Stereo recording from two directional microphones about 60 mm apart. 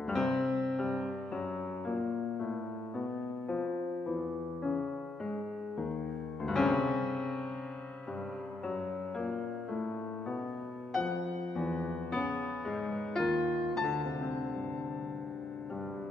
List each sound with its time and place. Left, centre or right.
0.1 s music: centre
6.4 s music: centre
9.2 s music: centre
11.5 s music: centre
12.2 s music: left
12.6 s music: centre